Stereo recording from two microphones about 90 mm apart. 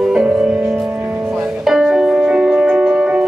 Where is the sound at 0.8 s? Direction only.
20° right (ahead or behind).